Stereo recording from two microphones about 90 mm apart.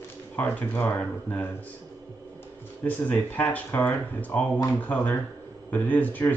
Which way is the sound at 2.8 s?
15° left (ahead or behind).